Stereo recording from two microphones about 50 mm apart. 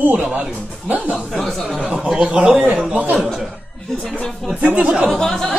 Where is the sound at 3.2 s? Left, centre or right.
Centre.